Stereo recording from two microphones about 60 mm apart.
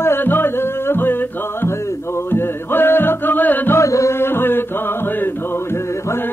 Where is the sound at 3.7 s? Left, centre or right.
Left.